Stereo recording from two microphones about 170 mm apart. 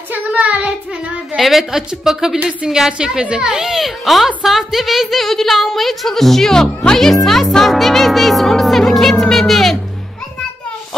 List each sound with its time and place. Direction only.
0.1 s child singing: 10° right (ahead or behind)
1.3 s a woman's voice: centre (ahead or behind)
7.2 s music: centre (ahead or behind)